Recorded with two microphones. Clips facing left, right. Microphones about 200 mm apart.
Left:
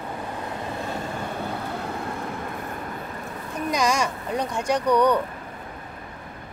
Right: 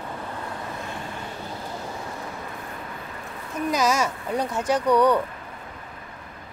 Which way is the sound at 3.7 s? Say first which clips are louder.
Even; 5° right (ahead or behind).